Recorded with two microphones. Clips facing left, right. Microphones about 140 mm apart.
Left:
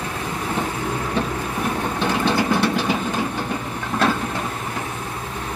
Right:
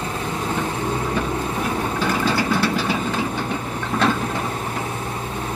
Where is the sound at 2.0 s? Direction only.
20° left (ahead or behind).